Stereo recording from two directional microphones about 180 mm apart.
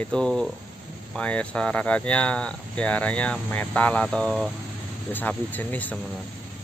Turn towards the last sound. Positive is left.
turn(degrees=10)  # may be behind; listen again after turning